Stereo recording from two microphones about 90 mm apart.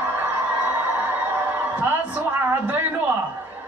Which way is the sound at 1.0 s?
20° right (ahead or behind).